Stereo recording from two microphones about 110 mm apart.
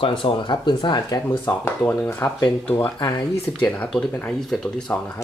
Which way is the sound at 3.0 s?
40° left (ahead or behind).